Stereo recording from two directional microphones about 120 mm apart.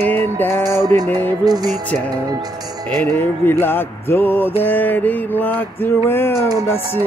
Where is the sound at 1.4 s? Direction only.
35° right (ahead or behind).